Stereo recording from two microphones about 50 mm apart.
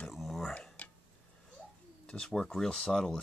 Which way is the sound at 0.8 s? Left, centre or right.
Left.